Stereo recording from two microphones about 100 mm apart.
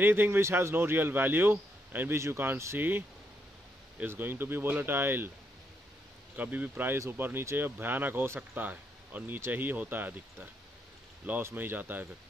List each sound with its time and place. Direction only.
0.0 s speech: 20° right (ahead or behind)
4.0 s speech: 20° right (ahead or behind)
6.3 s speech: 15° right (ahead or behind)